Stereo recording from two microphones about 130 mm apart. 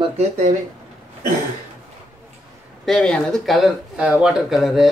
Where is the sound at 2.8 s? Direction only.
5° left (ahead or behind).